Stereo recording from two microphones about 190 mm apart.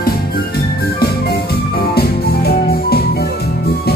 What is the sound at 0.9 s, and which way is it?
Music, 55° left (ahead or behind).